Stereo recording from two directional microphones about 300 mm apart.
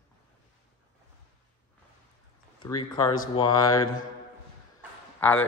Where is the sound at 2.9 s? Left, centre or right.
Centre.